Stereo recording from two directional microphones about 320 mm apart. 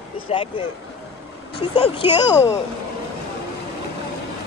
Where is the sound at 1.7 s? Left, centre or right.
Centre.